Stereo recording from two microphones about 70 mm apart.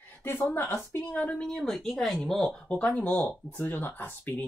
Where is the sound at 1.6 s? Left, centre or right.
Centre.